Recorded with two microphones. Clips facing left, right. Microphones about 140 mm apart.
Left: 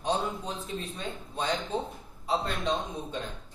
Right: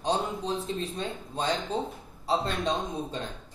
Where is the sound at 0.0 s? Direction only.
30° right (ahead or behind).